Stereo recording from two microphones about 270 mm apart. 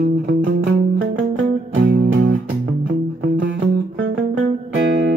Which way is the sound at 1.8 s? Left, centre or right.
Right.